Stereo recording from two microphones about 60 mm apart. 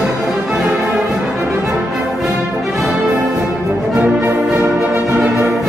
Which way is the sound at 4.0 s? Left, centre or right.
Right.